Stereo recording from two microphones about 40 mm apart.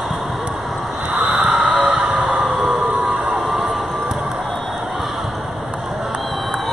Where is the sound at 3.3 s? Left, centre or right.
Centre.